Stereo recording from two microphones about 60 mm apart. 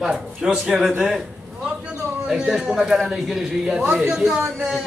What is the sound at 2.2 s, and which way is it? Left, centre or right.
Speech, centre.